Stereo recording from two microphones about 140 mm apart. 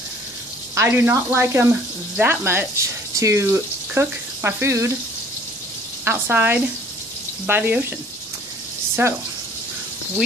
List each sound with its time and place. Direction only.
0.7 s speech: 20° right (ahead or behind)
6.0 s speech: 15° right (ahead or behind)
9.0 s speech: 15° right (ahead or behind)